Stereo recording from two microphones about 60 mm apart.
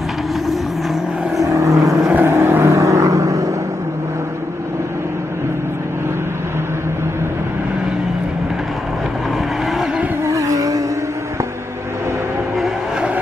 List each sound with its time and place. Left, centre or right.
1.4 s vehicle: right
2.1 s vehicle: right
2.6 s vehicle: right
10.2 s vehicle: right